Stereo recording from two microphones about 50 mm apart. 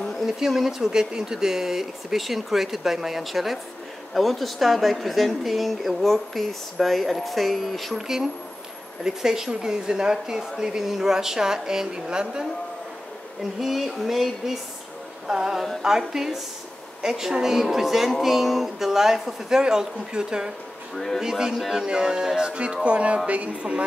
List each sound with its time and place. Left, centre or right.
0.4 s speech: centre
9.0 s speech: centre
13.4 s speech: centre
20.9 s speech: centre
21.2 s speech: centre
21.8 s speech: centre